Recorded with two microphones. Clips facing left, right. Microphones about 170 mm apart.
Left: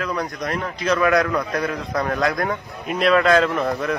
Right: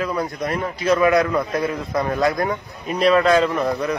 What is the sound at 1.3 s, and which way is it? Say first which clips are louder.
Speech: right 2 dB; 20° right (ahead or behind).